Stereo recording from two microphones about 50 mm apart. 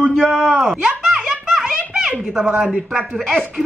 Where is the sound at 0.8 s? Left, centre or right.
Centre.